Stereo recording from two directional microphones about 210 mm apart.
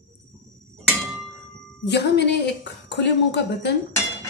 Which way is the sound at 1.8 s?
55° left (ahead or behind).